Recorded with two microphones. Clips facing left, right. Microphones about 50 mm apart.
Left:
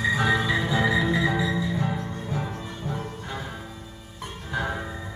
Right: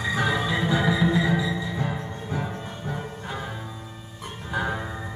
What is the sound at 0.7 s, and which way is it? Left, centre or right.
Music, right.